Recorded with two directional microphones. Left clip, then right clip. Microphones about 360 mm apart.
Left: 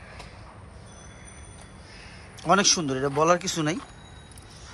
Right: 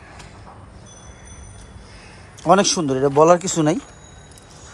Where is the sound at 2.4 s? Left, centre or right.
Centre.